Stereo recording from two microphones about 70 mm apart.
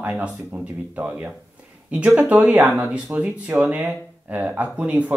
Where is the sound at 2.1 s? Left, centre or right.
Right.